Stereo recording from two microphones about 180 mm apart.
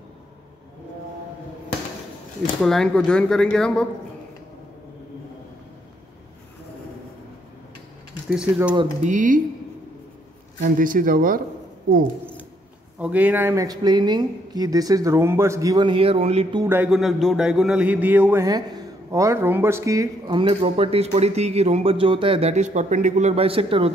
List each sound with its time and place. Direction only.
2.6 s a man's voice: 5° left (ahead or behind)
8.3 s a man's voice: 5° right (ahead or behind)
9.0 s speech: 45° right (ahead or behind)
10.6 s speech: 50° right (ahead or behind)
13.0 s speech: 10° right (ahead or behind); by 16.4 s 35° right (ahead or behind)
16.6 s music: 10° right (ahead or behind)
16.9 s a man's voice: centre (ahead or behind); by 23.9 s 30° right (ahead or behind)